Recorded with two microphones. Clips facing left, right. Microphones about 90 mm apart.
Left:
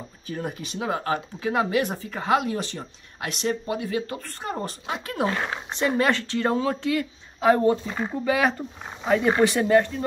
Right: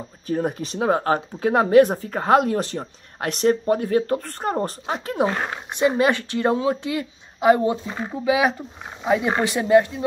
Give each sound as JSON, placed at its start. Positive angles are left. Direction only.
{"t": 0.3, "sound": "speech", "side_deg": -40}
{"t": 4.6, "sound": "speech", "side_deg": -35}